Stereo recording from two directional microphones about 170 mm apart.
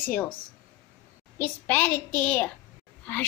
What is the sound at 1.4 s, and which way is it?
A child's voice, 10° left (ahead or behind).